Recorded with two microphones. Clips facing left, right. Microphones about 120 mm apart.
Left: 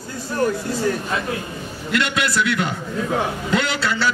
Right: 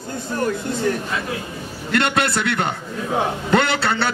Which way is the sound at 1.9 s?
50° right (ahead or behind).